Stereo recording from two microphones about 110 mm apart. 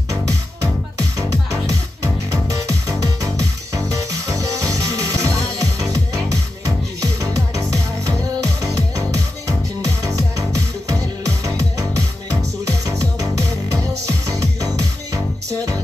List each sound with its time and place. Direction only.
0.1 s music: 30° right (ahead or behind)